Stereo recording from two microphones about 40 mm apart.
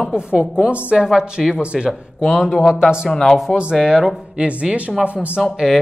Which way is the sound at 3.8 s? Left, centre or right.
Centre.